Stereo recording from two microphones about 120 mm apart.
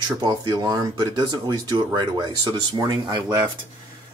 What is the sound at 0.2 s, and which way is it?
Speech, 35° right (ahead or behind).